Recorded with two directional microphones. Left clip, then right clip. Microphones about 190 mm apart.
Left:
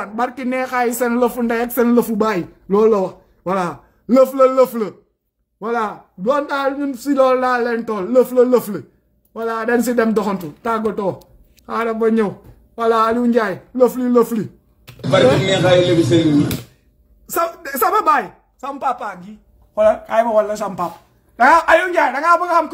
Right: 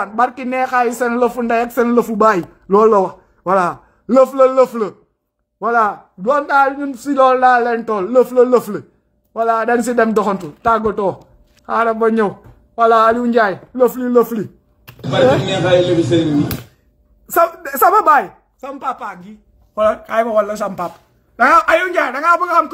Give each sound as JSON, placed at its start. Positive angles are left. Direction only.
{"t": 0.0, "sound": "speech", "side_deg": 15}
{"t": 2.2, "sound": "speech", "side_deg": 10}
{"t": 15.0, "sound": "speech", "side_deg": 30}
{"t": 17.3, "sound": "a woman's voice", "side_deg": 15}
{"t": 18.9, "sound": "speech", "side_deg": 0}
{"t": 19.7, "sound": "speech", "side_deg": -15}